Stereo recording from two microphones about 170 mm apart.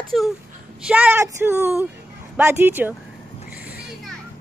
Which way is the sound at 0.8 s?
10° right (ahead or behind).